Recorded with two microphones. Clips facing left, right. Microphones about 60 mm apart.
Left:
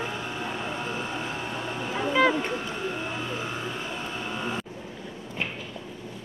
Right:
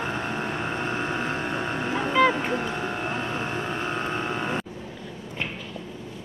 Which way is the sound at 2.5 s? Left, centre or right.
Right.